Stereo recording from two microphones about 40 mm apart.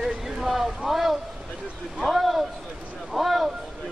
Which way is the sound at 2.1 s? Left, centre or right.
Centre.